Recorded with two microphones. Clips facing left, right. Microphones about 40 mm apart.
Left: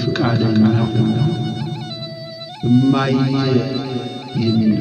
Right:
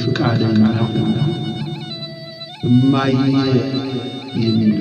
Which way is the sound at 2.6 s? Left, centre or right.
Right.